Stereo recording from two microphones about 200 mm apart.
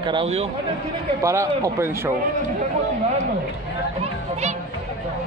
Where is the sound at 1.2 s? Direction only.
15° right (ahead or behind).